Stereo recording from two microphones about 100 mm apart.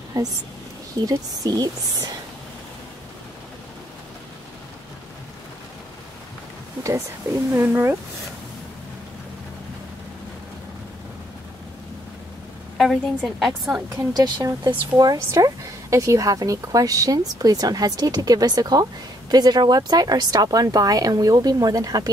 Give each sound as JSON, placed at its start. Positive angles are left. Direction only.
{"t": 0.2, "sound": "speech", "side_deg": -35}
{"t": 7.5, "sound": "speech", "side_deg": -25}
{"t": 12.7, "sound": "a woman's voice", "side_deg": 0}
{"t": 13.8, "sound": "speech", "side_deg": -35}